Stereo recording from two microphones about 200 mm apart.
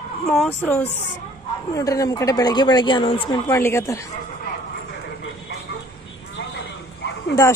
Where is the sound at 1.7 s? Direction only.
15° left (ahead or behind).